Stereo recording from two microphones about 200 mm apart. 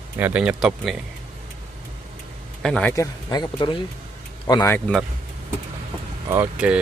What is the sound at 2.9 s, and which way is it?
Speech, 15° left (ahead or behind).